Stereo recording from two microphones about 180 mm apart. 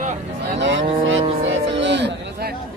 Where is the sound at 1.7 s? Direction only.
75° right (ahead or behind).